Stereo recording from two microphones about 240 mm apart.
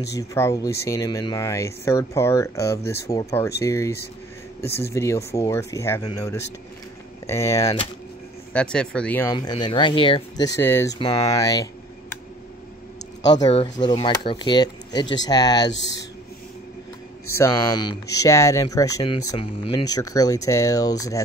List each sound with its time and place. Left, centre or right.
0.0 s speech: centre
8.5 s speech: centre
13.3 s speech: left
17.4 s speech: centre